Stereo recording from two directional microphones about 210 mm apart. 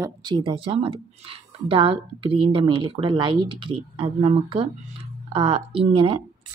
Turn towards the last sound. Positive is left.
turn(degrees=-25)  # may be behind; listen again after turning